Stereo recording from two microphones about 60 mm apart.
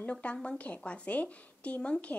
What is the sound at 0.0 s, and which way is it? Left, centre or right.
A woman's voice, left.